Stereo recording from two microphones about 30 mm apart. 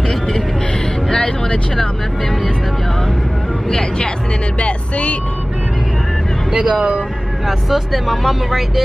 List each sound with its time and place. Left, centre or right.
1.1 s vehicle: left
3.6 s vehicle: centre
4.6 s music: left
7.4 s speech: centre